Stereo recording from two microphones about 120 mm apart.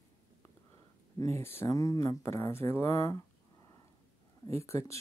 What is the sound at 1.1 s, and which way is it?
Speech, 25° left (ahead or behind).